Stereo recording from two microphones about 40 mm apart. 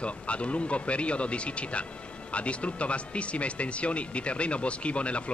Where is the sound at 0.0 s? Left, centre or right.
Left.